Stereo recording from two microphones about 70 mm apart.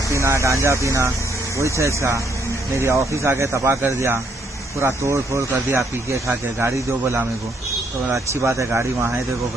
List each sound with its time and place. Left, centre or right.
0.1 s speech: right